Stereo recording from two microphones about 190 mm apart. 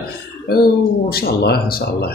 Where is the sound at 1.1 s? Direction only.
55° left (ahead or behind).